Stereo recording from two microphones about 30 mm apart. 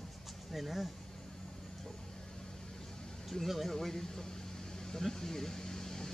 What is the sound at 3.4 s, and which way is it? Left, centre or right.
Speech, centre.